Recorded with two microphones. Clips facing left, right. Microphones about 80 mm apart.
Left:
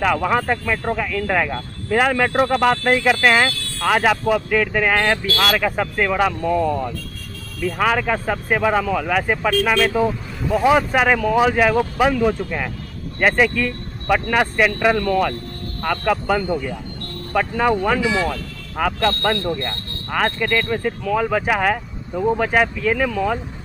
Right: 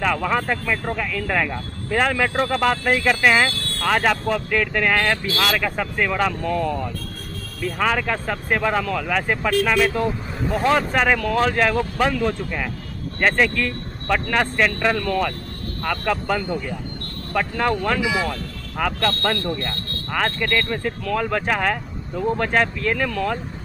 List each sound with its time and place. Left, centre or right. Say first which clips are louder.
0.0 s speech: left 3 dB; centre
3.5 s vehicle: right 2 dB; right
3.8 s speech: left 3 dB; centre
20.1 s speech: left 2 dB; centre